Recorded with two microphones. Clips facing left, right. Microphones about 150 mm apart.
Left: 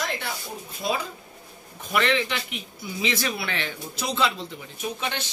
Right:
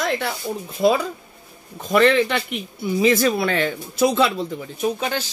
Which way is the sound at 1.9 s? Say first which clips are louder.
Right 8 dB; 40° right (ahead or behind).